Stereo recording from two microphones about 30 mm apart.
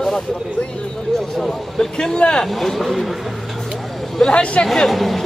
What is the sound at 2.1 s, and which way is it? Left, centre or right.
Speech, left.